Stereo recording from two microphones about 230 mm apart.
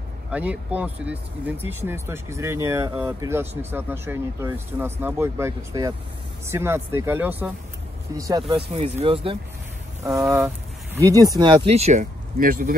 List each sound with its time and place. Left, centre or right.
0.3 s speech: centre; by 9.4 s right
10.0 s speech: centre; by 12.7 s right